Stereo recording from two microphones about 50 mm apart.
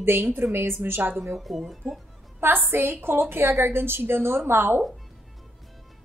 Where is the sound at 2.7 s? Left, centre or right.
Right.